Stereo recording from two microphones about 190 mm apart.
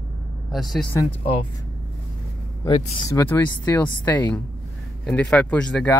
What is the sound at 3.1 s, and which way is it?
Speech, 15° left (ahead or behind).